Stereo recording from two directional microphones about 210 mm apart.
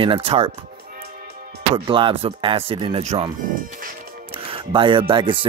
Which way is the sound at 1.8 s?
25° right (ahead or behind).